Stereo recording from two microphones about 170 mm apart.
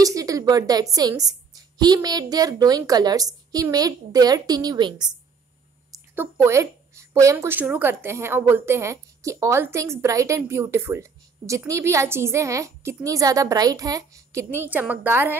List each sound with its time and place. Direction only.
0.0 s a woman's voice: 20° right (ahead or behind)
5.9 s a woman's voice: 15° right (ahead or behind)
14.7 s a woman's voice: 10° right (ahead or behind)